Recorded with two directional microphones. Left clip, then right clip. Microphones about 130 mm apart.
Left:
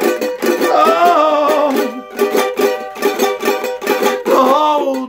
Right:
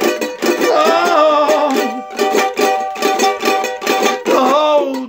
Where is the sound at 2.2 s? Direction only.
25° right (ahead or behind).